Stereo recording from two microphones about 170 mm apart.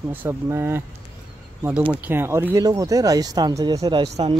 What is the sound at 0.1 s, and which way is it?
Speech, 15° right (ahead or behind).